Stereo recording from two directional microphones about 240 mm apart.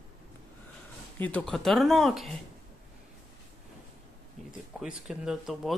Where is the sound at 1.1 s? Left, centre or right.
Centre.